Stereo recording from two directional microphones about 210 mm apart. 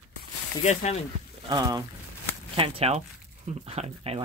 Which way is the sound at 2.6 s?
30° right (ahead or behind).